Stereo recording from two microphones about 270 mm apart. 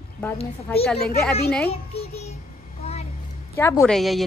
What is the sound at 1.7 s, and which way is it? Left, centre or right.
Music, left.